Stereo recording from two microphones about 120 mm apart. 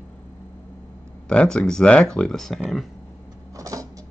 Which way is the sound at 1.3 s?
10° left (ahead or behind).